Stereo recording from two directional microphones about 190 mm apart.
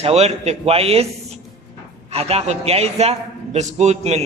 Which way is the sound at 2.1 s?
35° right (ahead or behind).